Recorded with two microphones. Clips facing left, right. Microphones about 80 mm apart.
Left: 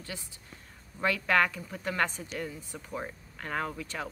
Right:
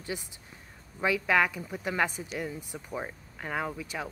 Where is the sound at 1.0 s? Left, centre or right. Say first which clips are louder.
Right 1 dB; centre.